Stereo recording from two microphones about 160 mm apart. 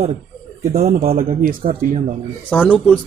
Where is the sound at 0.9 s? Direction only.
65° right (ahead or behind).